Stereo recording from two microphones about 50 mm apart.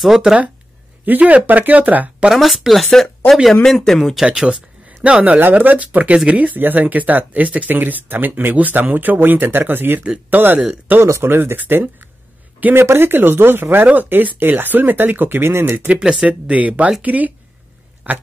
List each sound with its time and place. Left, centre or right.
0.0 s speech: centre
1.0 s speech: right
2.3 s speech: centre
4.3 s speech: centre; by 10.6 s right
11.0 s speech: right
12.7 s speech: right
16.0 s speech: centre
16.3 s speech: right
18.1 s a sound: right